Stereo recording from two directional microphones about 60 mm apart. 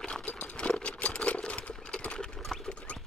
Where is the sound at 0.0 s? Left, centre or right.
Centre.